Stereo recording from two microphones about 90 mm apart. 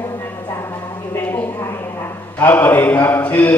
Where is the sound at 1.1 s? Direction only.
25° left (ahead or behind).